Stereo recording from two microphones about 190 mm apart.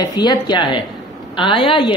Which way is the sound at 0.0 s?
20° left (ahead or behind).